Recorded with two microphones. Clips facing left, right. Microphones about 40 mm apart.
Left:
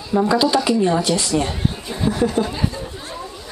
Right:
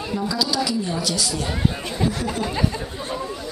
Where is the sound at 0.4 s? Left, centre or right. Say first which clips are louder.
Left 6 dB; left.